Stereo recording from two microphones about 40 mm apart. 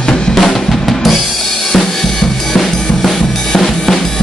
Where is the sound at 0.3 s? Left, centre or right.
Centre.